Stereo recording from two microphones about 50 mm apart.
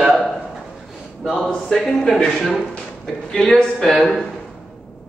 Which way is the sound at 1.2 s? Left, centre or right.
Centre.